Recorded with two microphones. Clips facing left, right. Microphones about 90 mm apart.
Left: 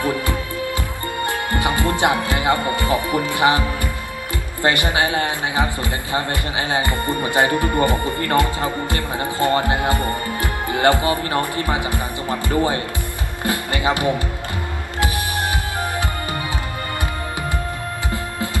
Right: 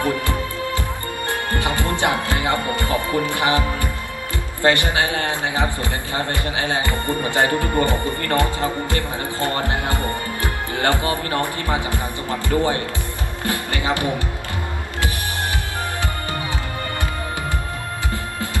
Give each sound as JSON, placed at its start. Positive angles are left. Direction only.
{"t": 0.0, "sound": "music", "side_deg": 20}
{"t": 3.3, "sound": "a man's voice", "side_deg": 20}